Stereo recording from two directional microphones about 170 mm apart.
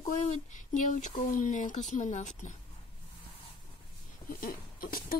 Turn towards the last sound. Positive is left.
turn(degrees=60)  # may be behind; listen again after turning